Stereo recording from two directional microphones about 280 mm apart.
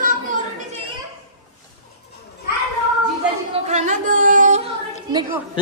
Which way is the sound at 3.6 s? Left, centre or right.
Right.